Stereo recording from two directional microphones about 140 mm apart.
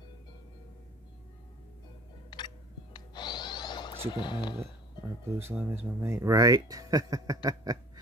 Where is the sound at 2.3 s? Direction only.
30° left (ahead or behind).